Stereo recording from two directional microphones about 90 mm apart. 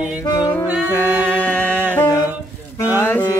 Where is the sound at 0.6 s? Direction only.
15° right (ahead or behind).